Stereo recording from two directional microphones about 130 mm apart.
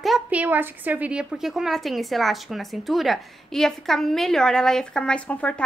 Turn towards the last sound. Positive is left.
turn(degrees=10)  # may be behind; listen again after turning